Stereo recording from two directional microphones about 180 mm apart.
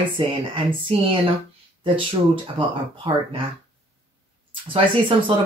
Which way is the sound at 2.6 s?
30° right (ahead or behind).